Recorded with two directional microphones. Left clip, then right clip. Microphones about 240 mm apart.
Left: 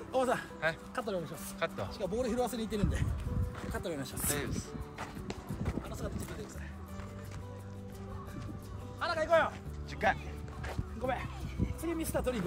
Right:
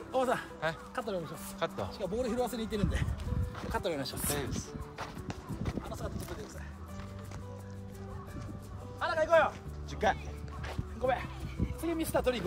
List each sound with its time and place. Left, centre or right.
0.1 s speech: centre
3.7 s speech: right
4.4 s speech: centre
9.0 s music: right
11.8 s speech: right